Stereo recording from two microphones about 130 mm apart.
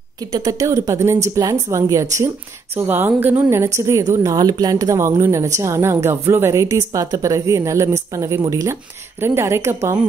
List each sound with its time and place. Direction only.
0.3 s a woman's voice: 25° right (ahead or behind)